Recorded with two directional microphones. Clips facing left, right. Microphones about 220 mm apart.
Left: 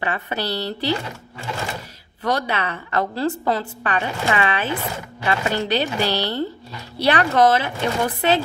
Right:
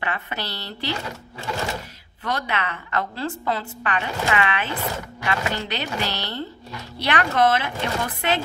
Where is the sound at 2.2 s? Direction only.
35° left (ahead or behind).